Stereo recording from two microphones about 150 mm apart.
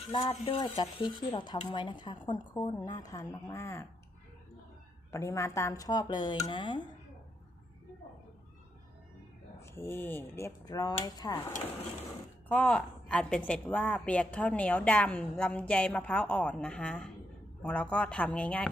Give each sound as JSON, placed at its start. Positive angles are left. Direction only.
{"t": 0.3, "sound": "speech", "side_deg": 40}
{"t": 0.7, "sound": "a woman's voice", "side_deg": 30}
{"t": 5.1, "sound": "a woman's voice", "side_deg": 20}
{"t": 9.6, "sound": "a woman's voice", "side_deg": 15}
{"t": 12.4, "sound": "a woman's voice", "side_deg": 5}